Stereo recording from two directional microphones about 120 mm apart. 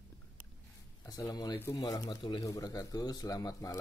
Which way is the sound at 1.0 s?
30° left (ahead or behind).